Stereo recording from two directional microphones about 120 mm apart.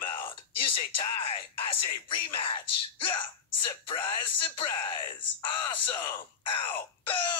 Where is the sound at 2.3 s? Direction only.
45° left (ahead or behind).